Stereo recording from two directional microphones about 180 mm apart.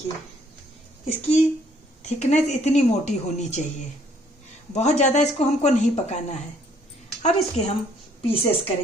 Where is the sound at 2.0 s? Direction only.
40° left (ahead or behind).